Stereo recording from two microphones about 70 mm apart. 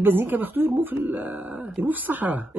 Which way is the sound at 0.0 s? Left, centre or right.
Right.